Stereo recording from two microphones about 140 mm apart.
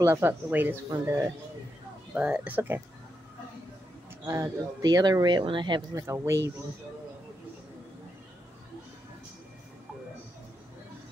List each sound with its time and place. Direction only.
0.0 s speech: 15° right (ahead or behind)
4.3 s speech: 25° right (ahead or behind)
5.9 s speech: 20° right (ahead or behind)